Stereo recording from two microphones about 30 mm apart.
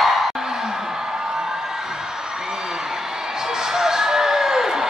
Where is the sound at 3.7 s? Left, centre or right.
Centre.